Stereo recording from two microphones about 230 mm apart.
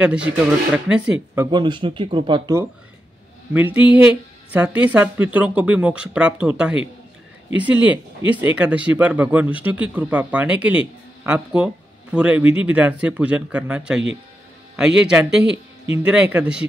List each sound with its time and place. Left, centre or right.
0.0 s speech: centre
1.5 s speech: centre